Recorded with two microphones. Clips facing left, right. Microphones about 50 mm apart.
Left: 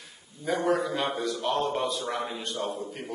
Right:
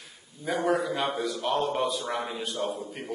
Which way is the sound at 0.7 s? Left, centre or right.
Centre.